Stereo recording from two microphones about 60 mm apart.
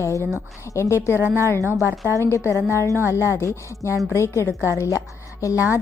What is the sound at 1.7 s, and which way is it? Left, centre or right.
Speech, right.